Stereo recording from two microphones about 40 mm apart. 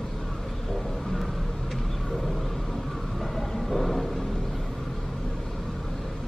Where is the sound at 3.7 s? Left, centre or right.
Centre.